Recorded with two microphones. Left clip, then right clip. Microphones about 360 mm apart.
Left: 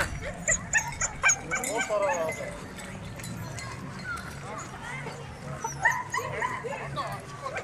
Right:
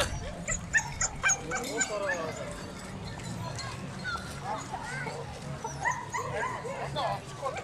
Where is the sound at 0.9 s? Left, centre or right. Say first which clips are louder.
Left 3 dB; centre.